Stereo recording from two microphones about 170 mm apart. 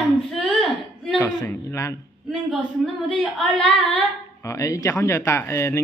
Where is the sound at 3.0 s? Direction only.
5° left (ahead or behind).